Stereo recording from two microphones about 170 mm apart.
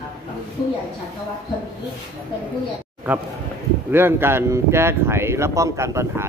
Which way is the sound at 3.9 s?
15° right (ahead or behind).